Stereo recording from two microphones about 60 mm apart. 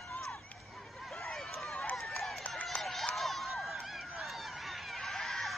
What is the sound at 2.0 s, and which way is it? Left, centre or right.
Run, centre.